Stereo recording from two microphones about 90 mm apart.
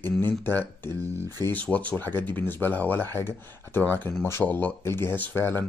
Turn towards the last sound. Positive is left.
turn(degrees=25)  # may be behind; listen again after turning